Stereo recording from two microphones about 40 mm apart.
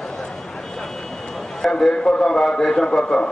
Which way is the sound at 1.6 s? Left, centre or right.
Centre.